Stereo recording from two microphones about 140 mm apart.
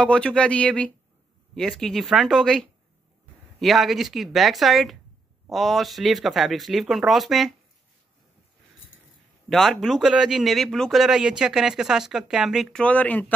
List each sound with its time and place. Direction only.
0.0 s speech: 5° left (ahead or behind)
9.5 s speech: centre (ahead or behind)
12.8 s speech: 10° left (ahead or behind)